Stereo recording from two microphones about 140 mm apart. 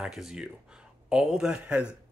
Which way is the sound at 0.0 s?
5° right (ahead or behind).